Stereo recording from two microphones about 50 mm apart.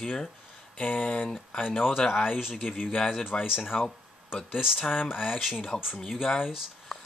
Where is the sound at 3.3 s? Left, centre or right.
Centre.